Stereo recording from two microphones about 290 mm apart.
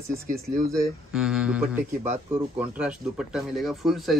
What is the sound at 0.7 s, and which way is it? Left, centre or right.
Speech, centre.